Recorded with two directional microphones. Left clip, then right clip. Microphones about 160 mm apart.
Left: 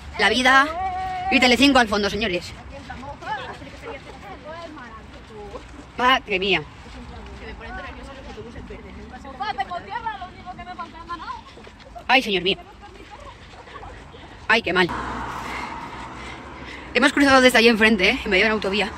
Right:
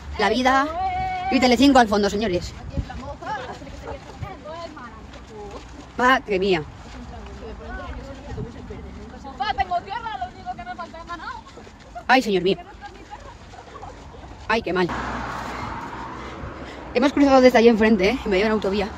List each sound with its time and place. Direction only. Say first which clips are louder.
0.2 s speech: left 3 dB; 15° right (ahead or behind)
5.9 s speech: even; 40° right (ahead or behind)
9.4 s a sound: right 4 dB; 30° right (ahead or behind)
12.1 s speech: right 1 dB; 35° right (ahead or behind)
14.5 s speech: left 3 dB; 5° right (ahead or behind)
15.0 s vehicle: even; 35° right (ahead or behind)
15.5 s vehicle: left 1 dB; 10° right (ahead or behind)
15.8 s a sound: right 1 dB; 15° left (ahead or behind)
16.9 s speech: left 1 dB; 10° right (ahead or behind)